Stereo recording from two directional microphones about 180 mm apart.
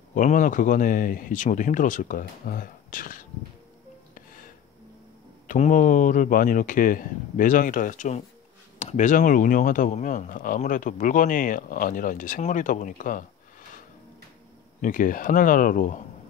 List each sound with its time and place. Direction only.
0.1 s speech: 45° left (ahead or behind)
4.1 s a sound: 50° left (ahead or behind)
5.5 s speech: 45° left (ahead or behind)
14.8 s speech: 45° left (ahead or behind)